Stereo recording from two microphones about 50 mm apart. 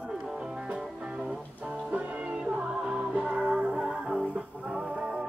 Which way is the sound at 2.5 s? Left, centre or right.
Right.